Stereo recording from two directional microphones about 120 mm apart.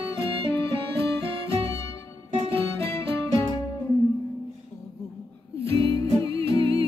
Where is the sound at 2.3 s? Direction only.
50° right (ahead or behind).